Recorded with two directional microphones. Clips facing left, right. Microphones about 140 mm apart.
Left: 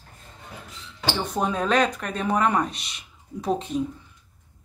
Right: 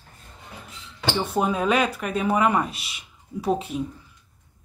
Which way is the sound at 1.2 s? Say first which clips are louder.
Right 2 dB; 5° right (ahead or behind).